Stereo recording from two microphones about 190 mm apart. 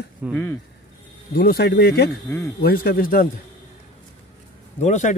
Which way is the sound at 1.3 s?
55° left (ahead or behind).